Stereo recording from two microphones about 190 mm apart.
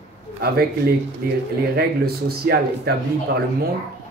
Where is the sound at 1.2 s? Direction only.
50° right (ahead or behind).